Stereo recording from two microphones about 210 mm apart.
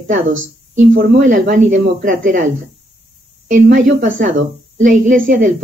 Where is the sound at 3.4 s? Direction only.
40° right (ahead or behind).